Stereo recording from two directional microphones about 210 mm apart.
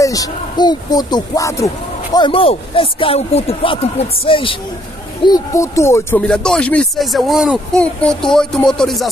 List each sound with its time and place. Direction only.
0.0 s speech: 15° left (ahead or behind); by 9.1 s centre (ahead or behind)